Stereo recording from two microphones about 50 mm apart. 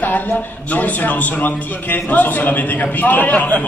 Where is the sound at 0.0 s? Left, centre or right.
Left.